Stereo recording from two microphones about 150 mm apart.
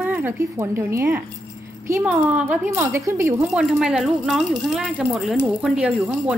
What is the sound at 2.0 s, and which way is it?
A woman's voice, 10° right (ahead or behind).